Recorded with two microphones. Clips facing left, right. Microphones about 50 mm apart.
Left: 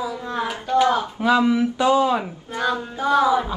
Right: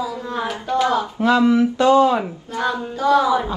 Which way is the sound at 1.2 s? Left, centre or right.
Centre.